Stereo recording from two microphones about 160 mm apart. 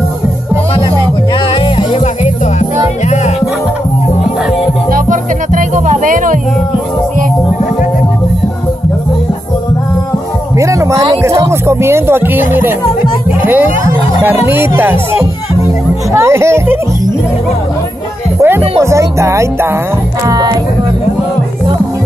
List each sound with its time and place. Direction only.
4.9 s music: 55° right (ahead or behind)
10.6 s a sound: 20° right (ahead or behind)
14.2 s speech: 15° right (ahead or behind)
18.4 s speech: 15° right (ahead or behind)
20.2 s music: 25° right (ahead or behind)